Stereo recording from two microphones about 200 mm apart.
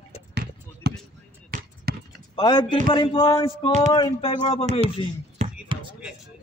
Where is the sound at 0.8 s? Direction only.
55° right (ahead or behind).